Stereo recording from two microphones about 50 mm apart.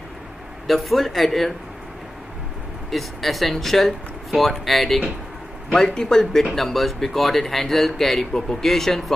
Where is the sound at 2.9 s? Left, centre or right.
Centre.